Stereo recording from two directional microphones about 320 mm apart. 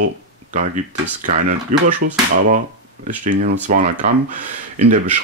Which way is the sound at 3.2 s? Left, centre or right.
Right.